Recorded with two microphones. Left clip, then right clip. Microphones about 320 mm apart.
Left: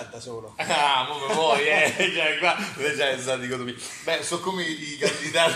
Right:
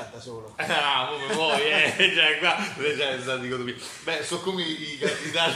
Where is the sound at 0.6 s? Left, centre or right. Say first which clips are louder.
Left 2 dB; centre.